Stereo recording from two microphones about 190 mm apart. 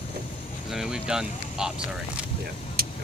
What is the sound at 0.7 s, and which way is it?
Speech, 5° right (ahead or behind).